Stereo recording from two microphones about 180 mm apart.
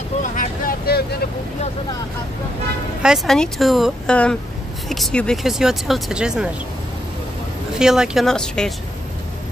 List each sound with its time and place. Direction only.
0.2 s vehicle: 50° left (ahead or behind)
3.0 s speech: centre (ahead or behind)
7.8 s speech: 5° right (ahead or behind)